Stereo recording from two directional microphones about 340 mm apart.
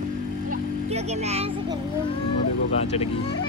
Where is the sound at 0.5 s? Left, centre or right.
Centre.